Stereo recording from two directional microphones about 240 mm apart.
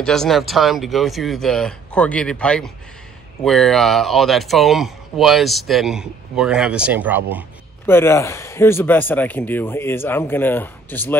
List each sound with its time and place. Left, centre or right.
0.0 s speech: centre
7.8 s speech: centre